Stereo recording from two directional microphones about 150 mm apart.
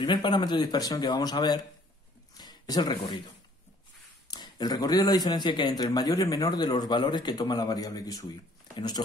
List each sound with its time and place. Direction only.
0.0 s speech: 30° left (ahead or behind)
2.3 s a sound: 25° left (ahead or behind)
4.3 s speech: 25° left (ahead or behind)